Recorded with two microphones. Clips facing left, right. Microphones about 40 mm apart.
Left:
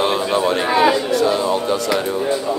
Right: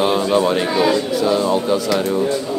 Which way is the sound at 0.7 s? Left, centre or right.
Centre.